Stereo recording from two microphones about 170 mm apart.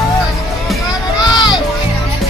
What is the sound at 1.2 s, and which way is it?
Music, 25° left (ahead or behind).